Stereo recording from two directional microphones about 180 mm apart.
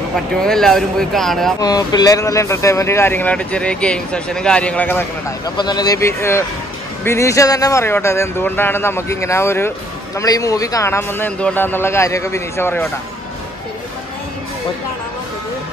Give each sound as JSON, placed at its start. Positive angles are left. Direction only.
{"t": 0.4, "sound": "speech", "side_deg": 5}
{"t": 1.6, "sound": "speech", "side_deg": 20}
{"t": 5.6, "sound": "speech", "side_deg": 25}